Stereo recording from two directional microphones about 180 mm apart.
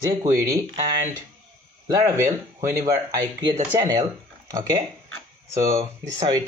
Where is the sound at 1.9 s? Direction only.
15° right (ahead or behind).